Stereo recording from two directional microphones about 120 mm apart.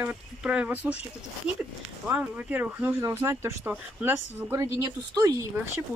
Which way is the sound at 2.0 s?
15° right (ahead or behind).